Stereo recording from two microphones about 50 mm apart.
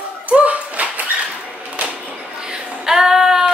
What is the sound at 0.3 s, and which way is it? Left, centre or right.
Clapping, right.